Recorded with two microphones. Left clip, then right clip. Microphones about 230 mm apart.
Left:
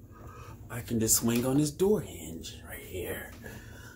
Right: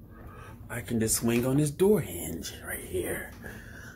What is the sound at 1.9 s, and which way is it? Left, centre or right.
Speech, right.